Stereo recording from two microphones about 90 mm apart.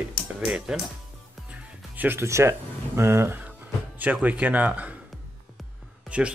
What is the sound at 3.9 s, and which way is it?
Speech, 15° right (ahead or behind).